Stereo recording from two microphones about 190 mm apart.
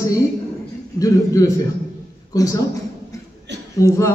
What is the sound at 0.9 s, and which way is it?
A man's voice, 15° left (ahead or behind).